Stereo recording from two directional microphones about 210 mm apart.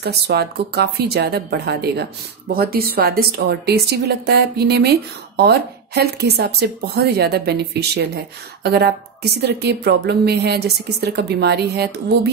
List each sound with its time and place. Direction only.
0.0 s speech: 50° right (ahead or behind)